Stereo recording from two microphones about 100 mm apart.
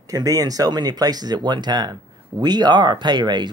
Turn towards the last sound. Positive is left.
turn(degrees=-45)  # may be behind; listen again after turning